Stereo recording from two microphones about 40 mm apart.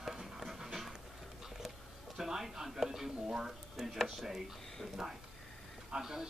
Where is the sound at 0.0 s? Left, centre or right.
Centre.